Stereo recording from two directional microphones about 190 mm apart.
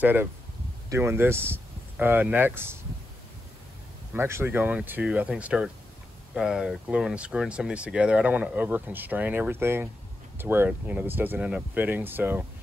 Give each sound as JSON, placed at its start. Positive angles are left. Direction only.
{"t": 0.0, "sound": "speech", "side_deg": -10}
{"t": 4.1, "sound": "speech", "side_deg": -15}